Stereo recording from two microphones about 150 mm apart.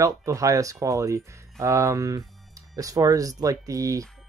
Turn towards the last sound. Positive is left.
turn(degrees=-20)  # may be behind; listen again after turning